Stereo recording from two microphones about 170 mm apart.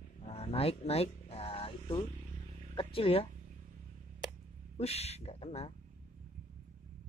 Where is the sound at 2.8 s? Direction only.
30° left (ahead or behind).